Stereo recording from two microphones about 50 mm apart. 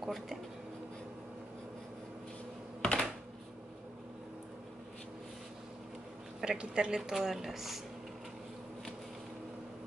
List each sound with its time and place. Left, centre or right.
0.0 s a sound: centre
2.8 s computer keyboard: centre
6.4 s speech: centre
7.0 s speech: centre